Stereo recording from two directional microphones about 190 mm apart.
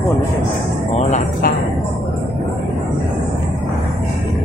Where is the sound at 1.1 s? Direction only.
50° left (ahead or behind).